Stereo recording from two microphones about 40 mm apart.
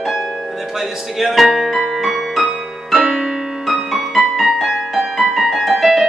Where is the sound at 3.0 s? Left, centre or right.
Centre.